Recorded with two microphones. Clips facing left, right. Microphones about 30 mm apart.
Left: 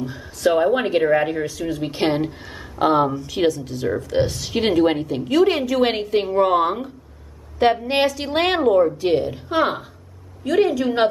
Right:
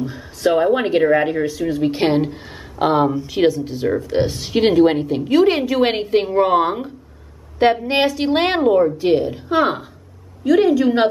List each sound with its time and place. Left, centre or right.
0.0 s a woman's voice: centre